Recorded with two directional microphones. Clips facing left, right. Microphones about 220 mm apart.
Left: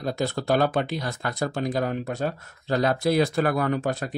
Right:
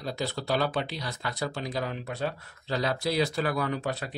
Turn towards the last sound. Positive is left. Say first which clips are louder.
# left 6 dB
turn(degrees=45)  # may be behind; listen again after turning